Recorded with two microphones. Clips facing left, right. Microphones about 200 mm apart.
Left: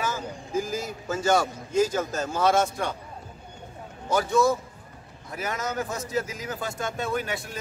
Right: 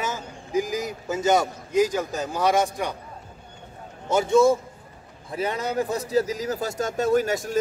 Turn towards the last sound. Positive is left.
turn(degrees=-40)  # may be behind; listen again after turning